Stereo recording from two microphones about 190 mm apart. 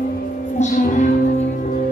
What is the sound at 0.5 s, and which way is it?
Music, 40° left (ahead or behind).